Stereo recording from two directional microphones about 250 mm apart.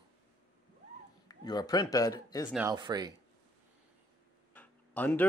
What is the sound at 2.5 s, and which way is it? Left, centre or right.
Speech, centre.